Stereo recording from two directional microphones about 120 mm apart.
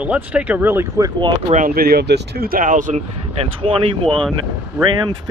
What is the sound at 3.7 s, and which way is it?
Speech, 50° right (ahead or behind).